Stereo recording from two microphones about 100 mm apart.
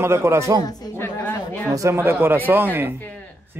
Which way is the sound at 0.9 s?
20° left (ahead or behind).